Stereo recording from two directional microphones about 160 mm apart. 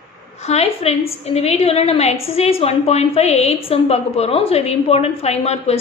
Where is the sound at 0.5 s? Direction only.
40° left (ahead or behind).